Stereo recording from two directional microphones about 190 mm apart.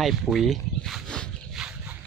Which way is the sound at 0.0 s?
Centre (ahead or behind).